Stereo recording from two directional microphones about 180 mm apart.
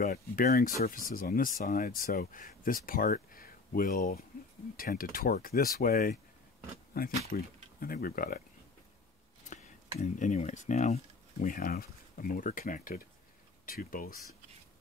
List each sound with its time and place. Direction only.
0.1 s speech: 55° left (ahead or behind)
9.5 s speech: 45° left (ahead or behind)
11.5 s speech: 50° left (ahead or behind)